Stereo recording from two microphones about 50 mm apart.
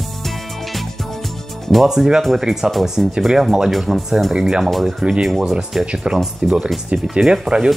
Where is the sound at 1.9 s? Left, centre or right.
Centre.